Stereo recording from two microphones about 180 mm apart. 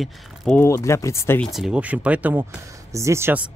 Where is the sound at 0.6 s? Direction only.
15° left (ahead or behind).